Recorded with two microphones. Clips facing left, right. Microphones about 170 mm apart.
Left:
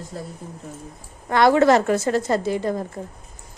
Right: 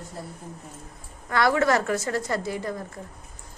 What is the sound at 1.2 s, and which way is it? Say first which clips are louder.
A woman's voice: left 6 dB; 25° left (ahead or behind).